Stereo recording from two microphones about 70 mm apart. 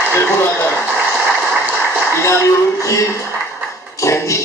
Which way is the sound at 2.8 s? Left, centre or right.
Left.